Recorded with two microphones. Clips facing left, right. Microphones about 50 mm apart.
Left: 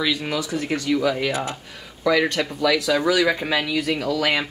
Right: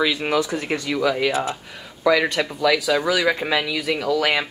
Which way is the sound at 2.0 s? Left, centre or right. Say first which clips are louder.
Right 1 dB; centre.